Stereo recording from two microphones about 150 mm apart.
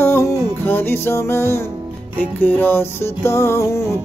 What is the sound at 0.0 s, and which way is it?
Music, 15° left (ahead or behind).